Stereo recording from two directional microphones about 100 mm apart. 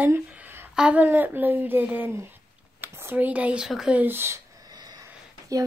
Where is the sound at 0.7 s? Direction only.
10° right (ahead or behind).